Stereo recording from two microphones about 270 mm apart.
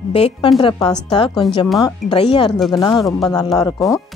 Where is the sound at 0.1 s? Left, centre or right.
Left.